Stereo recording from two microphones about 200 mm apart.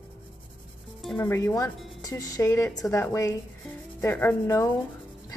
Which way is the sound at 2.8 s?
15° left (ahead or behind).